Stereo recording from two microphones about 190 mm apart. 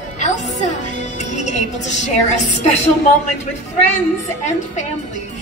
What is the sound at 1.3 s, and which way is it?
A woman's voice, 40° left (ahead or behind).